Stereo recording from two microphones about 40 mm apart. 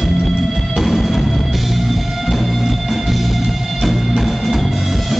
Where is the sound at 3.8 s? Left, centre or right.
Centre.